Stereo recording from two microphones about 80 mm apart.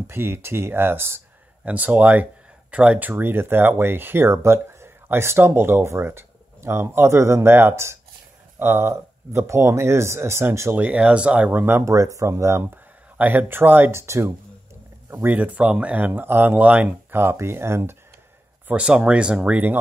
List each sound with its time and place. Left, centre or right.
0.0 s speech: right
1.6 s speech: centre; by 10.7 s right
10.7 s speech: centre
11.8 s speech: right
13.2 s speech: right
16.1 s speech: right
17.1 s speech: right
18.7 s speech: centre